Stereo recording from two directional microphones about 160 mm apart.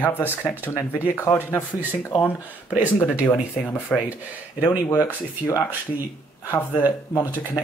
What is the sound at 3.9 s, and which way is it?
Speech, 5° left (ahead or behind).